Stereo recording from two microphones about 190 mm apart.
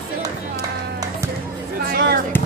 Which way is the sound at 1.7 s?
55° right (ahead or behind).